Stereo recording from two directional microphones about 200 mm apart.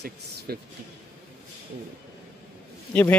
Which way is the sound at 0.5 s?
50° right (ahead or behind).